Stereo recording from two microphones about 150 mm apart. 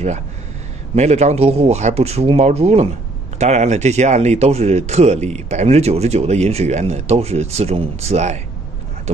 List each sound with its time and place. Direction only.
0.9 s speech: 50° right (ahead or behind)